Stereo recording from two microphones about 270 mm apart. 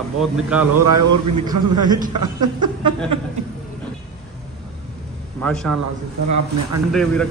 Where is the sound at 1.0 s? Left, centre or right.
Right.